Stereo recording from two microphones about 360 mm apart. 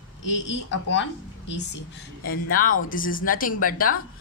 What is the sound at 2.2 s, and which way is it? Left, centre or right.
A woman's voice, left.